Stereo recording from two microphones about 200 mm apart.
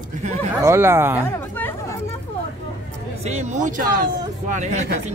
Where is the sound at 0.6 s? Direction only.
10° right (ahead or behind).